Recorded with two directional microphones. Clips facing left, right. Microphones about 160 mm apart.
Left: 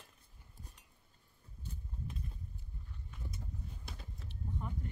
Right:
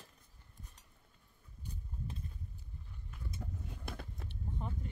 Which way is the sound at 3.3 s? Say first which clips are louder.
Right 3 dB; 80° right.